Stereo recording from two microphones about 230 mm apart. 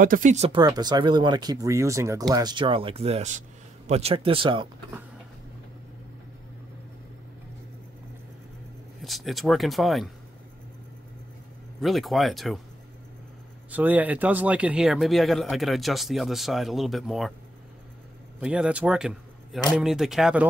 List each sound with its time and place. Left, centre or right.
0.0 s speech: right
9.0 s speech: centre
11.8 s speech: centre
13.7 s speech: centre
18.4 s a man's voice: centre